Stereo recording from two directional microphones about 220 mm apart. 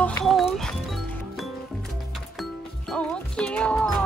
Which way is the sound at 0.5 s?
Centre (ahead or behind).